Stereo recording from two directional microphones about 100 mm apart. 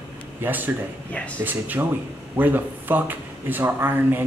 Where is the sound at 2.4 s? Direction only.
20° right (ahead or behind).